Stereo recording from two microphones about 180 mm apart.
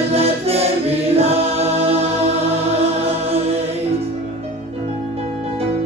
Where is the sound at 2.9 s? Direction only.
35° right (ahead or behind).